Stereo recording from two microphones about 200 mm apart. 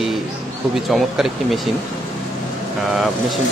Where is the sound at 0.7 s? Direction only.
Centre (ahead or behind).